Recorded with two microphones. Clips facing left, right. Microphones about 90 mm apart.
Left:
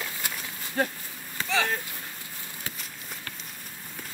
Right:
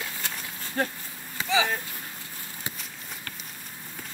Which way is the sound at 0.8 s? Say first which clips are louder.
Left 1 dB; centre (ahead or behind).